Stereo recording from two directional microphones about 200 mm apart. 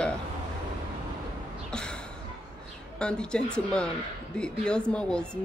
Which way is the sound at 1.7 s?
5° left (ahead or behind).